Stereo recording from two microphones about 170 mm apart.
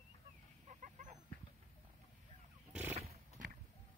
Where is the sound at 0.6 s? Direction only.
45° right (ahead or behind).